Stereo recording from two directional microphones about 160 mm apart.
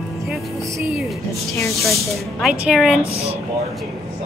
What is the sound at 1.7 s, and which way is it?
Speech, centre (ahead or behind).